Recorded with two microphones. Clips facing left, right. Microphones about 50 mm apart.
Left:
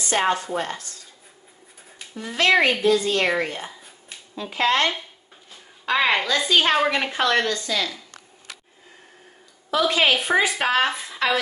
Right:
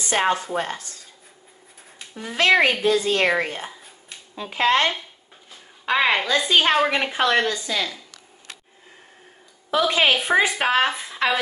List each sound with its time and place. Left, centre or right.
0.2 s a woman's voice: centre
2.1 s speech: centre
3.3 s a woman's voice: centre
4.4 s speech: right
5.9 s a woman's voice: right
9.7 s speech: right
10.1 s a woman's voice: centre